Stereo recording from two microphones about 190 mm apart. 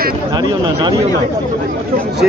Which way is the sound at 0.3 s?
20° right (ahead or behind).